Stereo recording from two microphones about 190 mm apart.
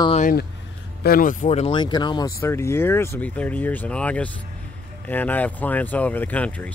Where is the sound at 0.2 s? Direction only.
50° left (ahead or behind).